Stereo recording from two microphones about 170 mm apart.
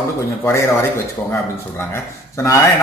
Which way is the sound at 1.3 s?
15° left (ahead or behind).